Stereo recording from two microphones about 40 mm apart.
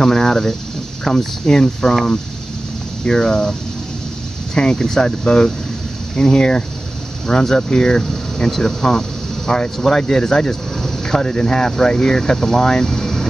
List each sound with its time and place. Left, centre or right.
0.0 s speech: centre
3.1 s speech: centre
4.6 s speech: centre